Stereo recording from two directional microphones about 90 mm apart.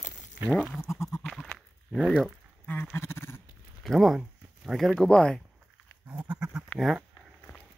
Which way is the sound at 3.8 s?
Centre (ahead or behind).